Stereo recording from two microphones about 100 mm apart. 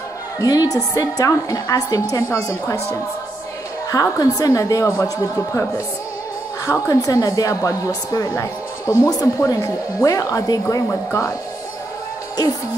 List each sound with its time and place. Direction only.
0.4 s a woman's voice: 40° left (ahead or behind)
3.9 s a woman's voice: 35° left (ahead or behind)
6.6 s a woman's voice: 30° left (ahead or behind)